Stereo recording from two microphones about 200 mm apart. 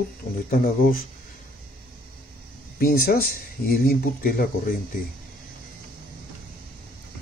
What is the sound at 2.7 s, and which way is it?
Speech, 45° left (ahead or behind).